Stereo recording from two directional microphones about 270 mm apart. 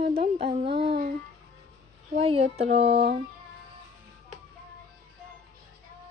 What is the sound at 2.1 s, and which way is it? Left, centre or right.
Speech, right.